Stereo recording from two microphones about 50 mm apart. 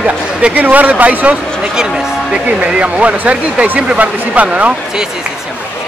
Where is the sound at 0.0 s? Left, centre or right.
Right.